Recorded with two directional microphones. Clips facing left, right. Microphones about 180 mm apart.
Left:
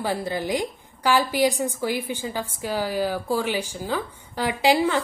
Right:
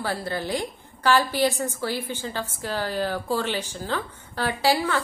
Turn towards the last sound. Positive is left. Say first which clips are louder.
# left 3 dB
turn(degrees=20)  # may be behind; listen again after turning